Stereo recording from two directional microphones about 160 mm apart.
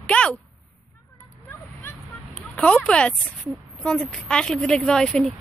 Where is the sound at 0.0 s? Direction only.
10° left (ahead or behind).